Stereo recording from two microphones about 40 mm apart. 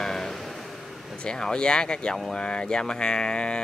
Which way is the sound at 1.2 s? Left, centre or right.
Left.